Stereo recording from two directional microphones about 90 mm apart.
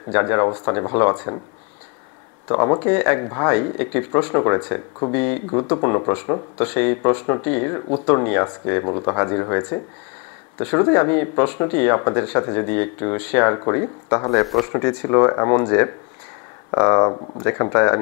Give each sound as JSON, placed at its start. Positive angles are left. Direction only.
{"t": 0.1, "sound": "speech", "side_deg": 25}
{"t": 2.4, "sound": "speech", "side_deg": 30}
{"t": 14.3, "sound": "speech", "side_deg": 0}
{"t": 14.7, "sound": "speech", "side_deg": 25}